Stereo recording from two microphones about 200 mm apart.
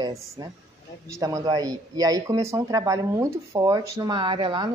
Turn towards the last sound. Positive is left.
turn(degrees=-25)  # may be behind; listen again after turning